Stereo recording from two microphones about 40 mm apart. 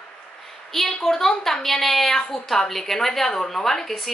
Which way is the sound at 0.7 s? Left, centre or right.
Centre.